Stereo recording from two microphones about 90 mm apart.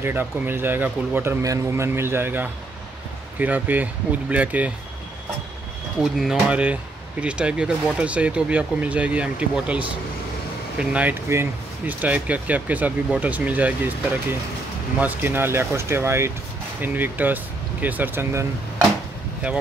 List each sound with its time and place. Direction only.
0.0 s speech: 25° right (ahead or behind)
1.4 s speech: 35° right (ahead or behind); by 4.7 s 15° right (ahead or behind)
5.9 s speech: 5° right (ahead or behind)
15.0 s speech: 20° right (ahead or behind)